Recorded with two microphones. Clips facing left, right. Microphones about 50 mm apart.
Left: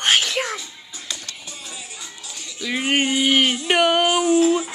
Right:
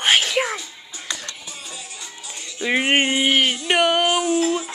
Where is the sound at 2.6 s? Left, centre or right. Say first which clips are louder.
Right 3 dB; right.